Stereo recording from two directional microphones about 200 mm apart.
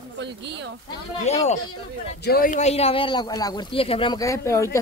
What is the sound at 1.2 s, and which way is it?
Speech, 35° left (ahead or behind).